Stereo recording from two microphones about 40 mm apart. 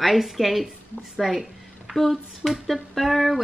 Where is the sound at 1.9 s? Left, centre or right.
Centre.